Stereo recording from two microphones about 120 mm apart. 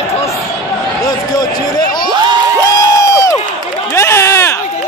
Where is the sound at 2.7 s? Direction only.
30° left (ahead or behind).